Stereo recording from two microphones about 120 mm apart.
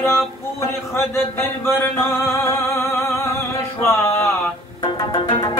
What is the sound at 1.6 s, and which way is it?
Music, 20° left (ahead or behind).